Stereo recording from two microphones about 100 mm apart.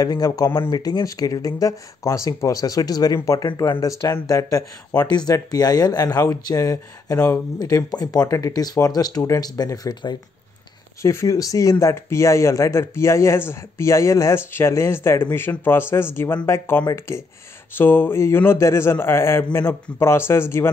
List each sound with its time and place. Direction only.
0.0 s speech: 40° left (ahead or behind)
5.0 s speech: 45° left (ahead or behind); by 20.7 s 25° left (ahead or behind)